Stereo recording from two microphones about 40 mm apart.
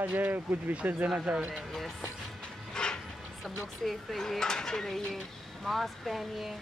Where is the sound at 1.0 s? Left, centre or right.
Right.